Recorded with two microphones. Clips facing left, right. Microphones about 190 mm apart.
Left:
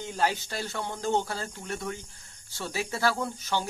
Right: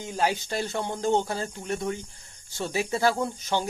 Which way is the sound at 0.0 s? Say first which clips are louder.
Right 2 dB; 15° right (ahead or behind).